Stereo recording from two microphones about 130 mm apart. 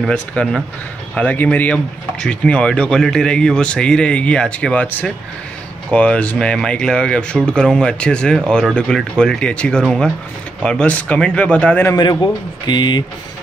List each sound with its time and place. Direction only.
0.1 s speech: 10° left (ahead or behind)
11.9 s a man's voice: 35° left (ahead or behind)